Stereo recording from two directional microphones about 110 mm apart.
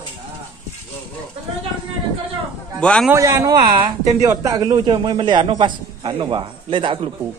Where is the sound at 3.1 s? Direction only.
30° right (ahead or behind); by 7.1 s 50° right (ahead or behind).